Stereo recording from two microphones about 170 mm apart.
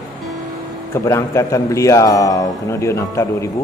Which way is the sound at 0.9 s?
15° left (ahead or behind).